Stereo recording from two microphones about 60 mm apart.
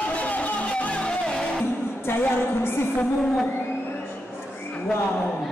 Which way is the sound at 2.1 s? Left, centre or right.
Left.